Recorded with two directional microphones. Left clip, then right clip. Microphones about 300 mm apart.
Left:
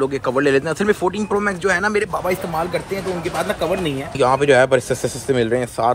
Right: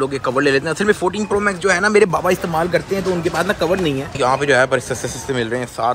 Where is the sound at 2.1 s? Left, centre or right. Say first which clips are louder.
Right 4 dB; right.